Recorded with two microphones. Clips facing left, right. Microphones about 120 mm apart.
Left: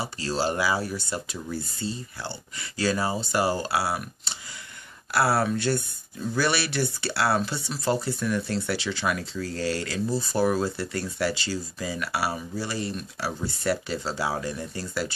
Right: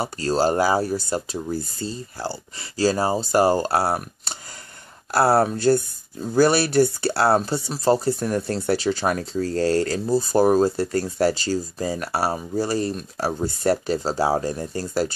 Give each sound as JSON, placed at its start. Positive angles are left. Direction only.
{"t": 0.0, "sound": "speech", "side_deg": -45}